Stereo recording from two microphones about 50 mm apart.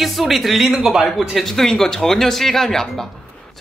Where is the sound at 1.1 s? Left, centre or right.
Centre.